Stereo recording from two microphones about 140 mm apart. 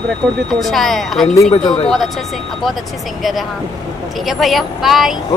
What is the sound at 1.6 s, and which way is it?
Speech, 40° left (ahead or behind).